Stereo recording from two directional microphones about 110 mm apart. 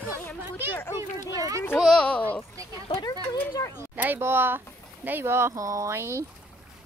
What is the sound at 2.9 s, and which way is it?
Speech, 45° left (ahead or behind).